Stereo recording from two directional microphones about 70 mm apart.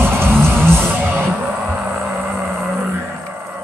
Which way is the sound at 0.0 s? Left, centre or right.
Right.